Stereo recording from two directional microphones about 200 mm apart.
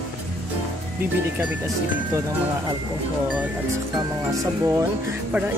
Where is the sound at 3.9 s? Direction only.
15° right (ahead or behind).